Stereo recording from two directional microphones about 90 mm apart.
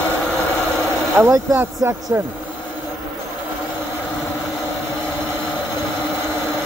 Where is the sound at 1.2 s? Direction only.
25° right (ahead or behind).